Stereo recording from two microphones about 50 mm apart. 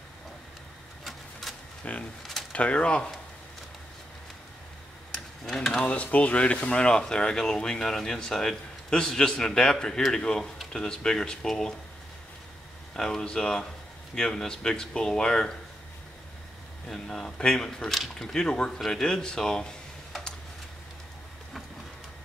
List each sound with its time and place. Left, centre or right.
1.8 s speech: left
5.1 s a sound: centre
5.9 s speech: left; by 11.7 s centre
12.9 s speech: centre
16.9 s speech: centre
18.3 s speech: centre